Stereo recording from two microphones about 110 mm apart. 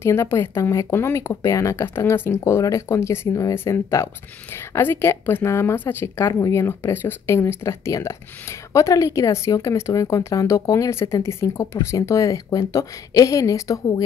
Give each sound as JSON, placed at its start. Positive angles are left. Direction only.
{"t": 0.0, "sound": "speech", "side_deg": 25}